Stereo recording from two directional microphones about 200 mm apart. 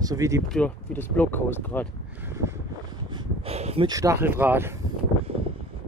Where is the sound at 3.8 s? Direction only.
15° right (ahead or behind).